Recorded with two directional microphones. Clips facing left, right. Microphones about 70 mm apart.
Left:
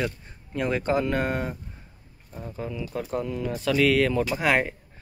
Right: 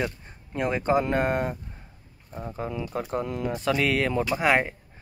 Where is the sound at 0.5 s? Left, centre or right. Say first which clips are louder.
Right 1 dB; centre.